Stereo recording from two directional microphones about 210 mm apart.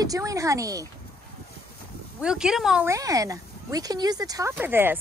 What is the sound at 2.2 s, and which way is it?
Speech, 5° right (ahead or behind).